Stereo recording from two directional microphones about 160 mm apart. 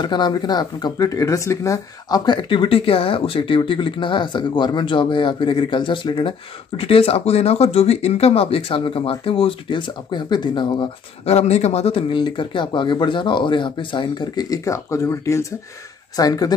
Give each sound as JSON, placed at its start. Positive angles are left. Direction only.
{"t": 0.0, "sound": "speech", "side_deg": 25}